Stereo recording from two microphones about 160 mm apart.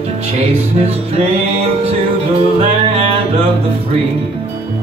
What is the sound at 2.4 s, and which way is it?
Music, 40° right (ahead or behind).